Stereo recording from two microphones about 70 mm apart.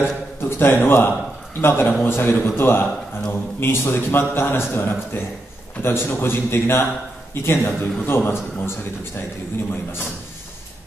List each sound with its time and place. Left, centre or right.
0.0 s a man's voice: left